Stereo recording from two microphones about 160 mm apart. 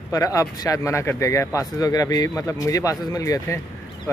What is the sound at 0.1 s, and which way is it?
Speech, 20° left (ahead or behind).